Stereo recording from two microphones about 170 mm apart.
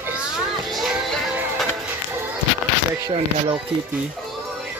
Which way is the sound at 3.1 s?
30° right (ahead or behind).